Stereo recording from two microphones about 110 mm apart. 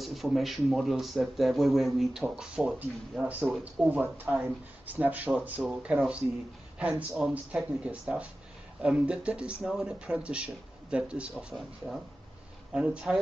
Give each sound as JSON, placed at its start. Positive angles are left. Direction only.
{"t": 0.0, "sound": "speech", "side_deg": 0}